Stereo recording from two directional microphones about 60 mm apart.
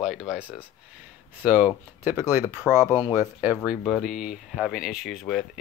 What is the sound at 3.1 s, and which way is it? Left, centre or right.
Speech, right.